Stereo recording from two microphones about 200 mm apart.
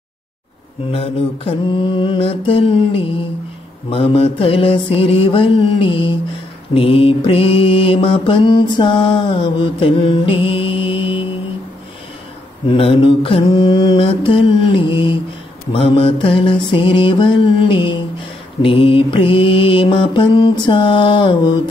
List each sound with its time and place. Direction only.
0.9 s mantra: 30° left (ahead or behind)
12.6 s mantra: 25° left (ahead or behind)